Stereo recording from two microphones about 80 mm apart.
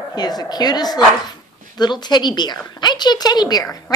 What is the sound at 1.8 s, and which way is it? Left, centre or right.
A woman's voice, left.